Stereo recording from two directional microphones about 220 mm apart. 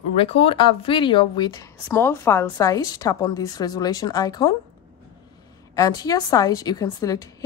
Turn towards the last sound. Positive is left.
turn(degrees=15)  # may be behind; listen again after turning